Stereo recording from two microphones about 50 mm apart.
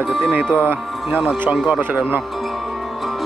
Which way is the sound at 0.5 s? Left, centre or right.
Right.